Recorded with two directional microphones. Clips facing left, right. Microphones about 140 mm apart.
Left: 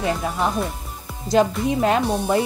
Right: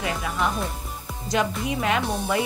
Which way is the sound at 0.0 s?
35° left (ahead or behind).